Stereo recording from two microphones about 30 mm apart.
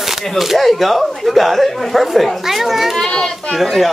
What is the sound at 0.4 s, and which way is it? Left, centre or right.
Speech, centre.